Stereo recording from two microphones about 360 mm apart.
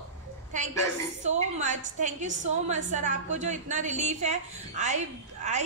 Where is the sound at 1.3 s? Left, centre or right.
Centre.